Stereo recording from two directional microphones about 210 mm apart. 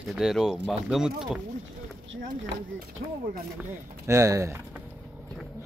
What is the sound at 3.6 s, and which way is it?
Speech, 15° right (ahead or behind).